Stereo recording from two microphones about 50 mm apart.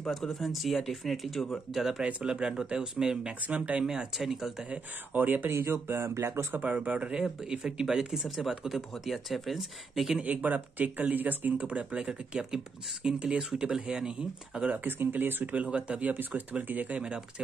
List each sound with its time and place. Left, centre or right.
0.1 s speech: centre
2.0 s speech: right
3.3 s speech: right
3.8 s speech: centre
4.6 s speech: right
5.6 s speech: right
6.6 s speech: right; by 10.1 s centre
10.2 s speech: right; by 14.7 s centre
14.7 s speech: right
15.5 s speech: right